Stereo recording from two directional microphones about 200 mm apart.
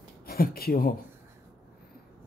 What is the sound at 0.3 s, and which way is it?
Speech, 50° left (ahead or behind).